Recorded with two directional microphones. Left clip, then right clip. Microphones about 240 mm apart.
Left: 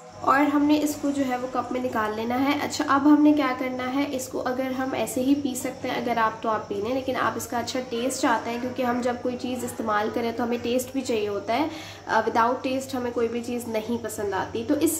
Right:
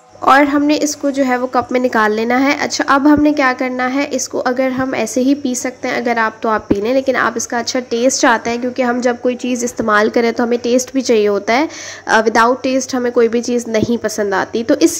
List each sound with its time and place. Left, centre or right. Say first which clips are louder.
0.2 s a woman's voice: right 11 dB; right